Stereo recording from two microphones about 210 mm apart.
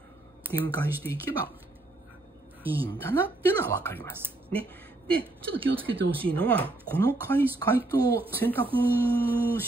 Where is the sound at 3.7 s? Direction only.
10° left (ahead or behind).